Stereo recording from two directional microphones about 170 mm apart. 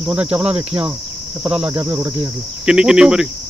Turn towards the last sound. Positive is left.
turn(degrees=-5)  # may be behind; listen again after turning